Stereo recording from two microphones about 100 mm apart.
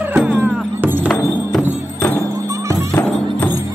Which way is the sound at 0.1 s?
15° right (ahead or behind).